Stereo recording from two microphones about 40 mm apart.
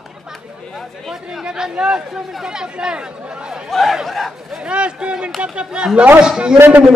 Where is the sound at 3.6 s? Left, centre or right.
Centre.